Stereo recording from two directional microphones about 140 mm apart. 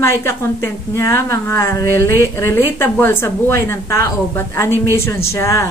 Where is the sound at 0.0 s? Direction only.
20° left (ahead or behind).